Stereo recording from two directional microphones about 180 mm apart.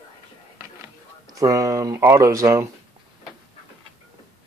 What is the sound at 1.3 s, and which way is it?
Speech, 20° right (ahead or behind).